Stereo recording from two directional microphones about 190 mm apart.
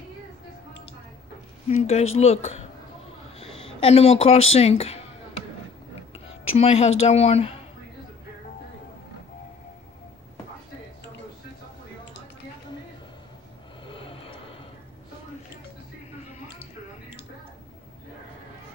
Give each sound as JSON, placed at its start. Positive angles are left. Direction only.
{"t": 1.7, "sound": "a woman's voice", "side_deg": 35}
{"t": 6.5, "sound": "a woman's voice", "side_deg": 35}
{"t": 13.8, "sound": "a sound", "side_deg": 30}